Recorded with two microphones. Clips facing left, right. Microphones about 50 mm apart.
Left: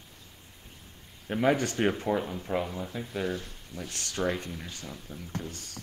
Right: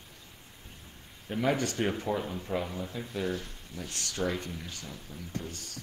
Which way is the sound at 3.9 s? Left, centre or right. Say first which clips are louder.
Left 2 dB; left.